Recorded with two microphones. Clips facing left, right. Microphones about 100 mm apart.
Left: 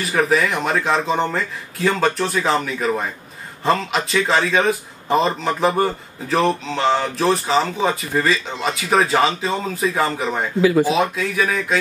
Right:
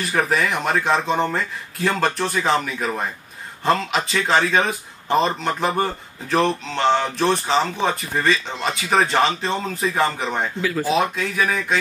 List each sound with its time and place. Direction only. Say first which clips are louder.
0.0 s speech: left 3 dB; centre (ahead or behind)
10.6 s speech: left 13 dB; 15° left (ahead or behind)
10.9 s speech: left 1 dB; centre (ahead or behind)